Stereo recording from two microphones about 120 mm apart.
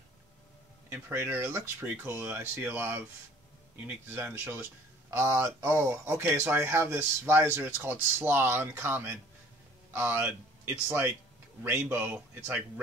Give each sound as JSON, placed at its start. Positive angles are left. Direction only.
{"t": 0.8, "sound": "a man's voice", "side_deg": -20}